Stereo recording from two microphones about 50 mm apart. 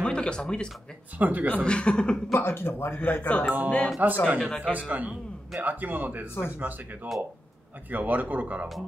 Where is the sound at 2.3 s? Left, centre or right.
Left.